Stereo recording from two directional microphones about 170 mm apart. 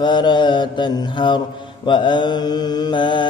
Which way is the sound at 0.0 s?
25° left (ahead or behind).